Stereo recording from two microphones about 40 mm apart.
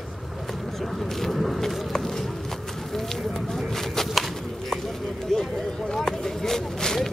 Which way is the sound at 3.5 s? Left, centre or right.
Centre.